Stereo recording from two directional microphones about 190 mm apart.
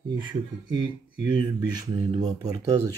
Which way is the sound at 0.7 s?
25° right (ahead or behind).